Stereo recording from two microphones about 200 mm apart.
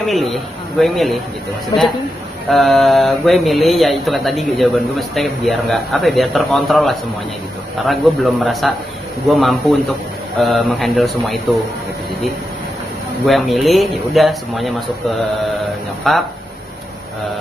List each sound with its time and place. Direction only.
0.1 s speech: centre (ahead or behind)
1.7 s a man's voice: 20° left (ahead or behind)
2.5 s speech: centre (ahead or behind)
13.2 s speech: centre (ahead or behind)